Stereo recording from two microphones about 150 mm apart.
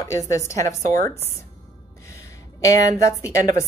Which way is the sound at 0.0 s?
20° left (ahead or behind).